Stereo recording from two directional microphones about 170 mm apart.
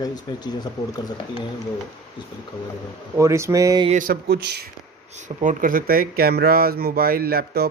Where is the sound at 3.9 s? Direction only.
55° right (ahead or behind); by 4.7 s 70° right (ahead or behind).